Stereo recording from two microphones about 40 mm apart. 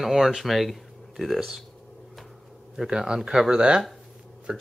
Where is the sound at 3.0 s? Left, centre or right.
Centre.